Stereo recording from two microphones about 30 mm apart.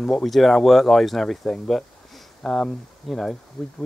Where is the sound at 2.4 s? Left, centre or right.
Centre.